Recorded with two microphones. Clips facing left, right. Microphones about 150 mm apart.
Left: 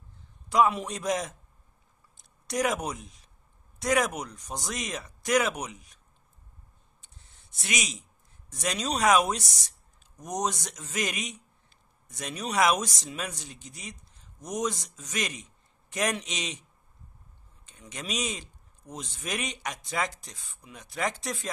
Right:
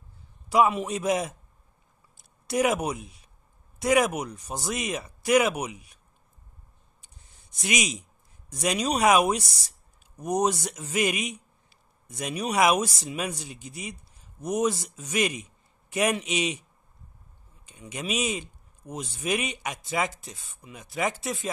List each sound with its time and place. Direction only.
0.5 s speech: 5° right (ahead or behind)
2.4 s speech: 10° right (ahead or behind)
7.5 s speech: 15° right (ahead or behind)
17.6 s speech: 10° right (ahead or behind)